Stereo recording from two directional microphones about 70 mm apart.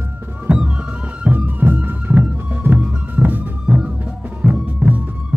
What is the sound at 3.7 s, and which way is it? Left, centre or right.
Music, centre.